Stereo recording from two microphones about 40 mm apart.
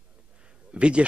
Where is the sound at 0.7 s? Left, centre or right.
Right.